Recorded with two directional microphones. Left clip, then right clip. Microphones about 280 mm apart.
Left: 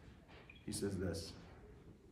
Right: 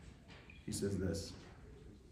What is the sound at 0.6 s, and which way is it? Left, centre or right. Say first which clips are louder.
Speech: right 2 dB; centre.